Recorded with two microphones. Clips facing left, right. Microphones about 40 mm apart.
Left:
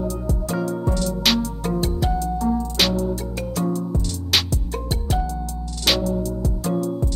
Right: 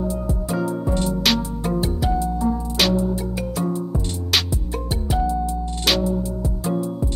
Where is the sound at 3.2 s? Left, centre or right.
Centre.